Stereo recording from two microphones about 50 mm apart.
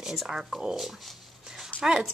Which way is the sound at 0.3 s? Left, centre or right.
Centre.